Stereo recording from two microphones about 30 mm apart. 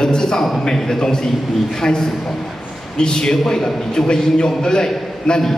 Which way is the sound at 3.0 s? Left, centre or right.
Left.